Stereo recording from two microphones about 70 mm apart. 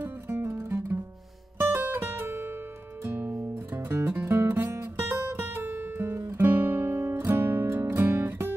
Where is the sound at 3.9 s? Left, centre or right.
Right.